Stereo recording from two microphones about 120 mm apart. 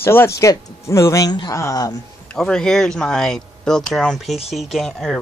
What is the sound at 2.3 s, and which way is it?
Speech, 5° left (ahead or behind).